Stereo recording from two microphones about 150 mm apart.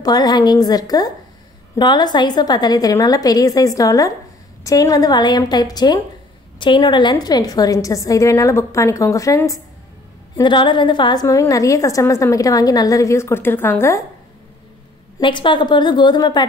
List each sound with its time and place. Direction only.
0.0 s a woman's voice: 25° left (ahead or behind)
15.1 s a woman's voice: 30° left (ahead or behind)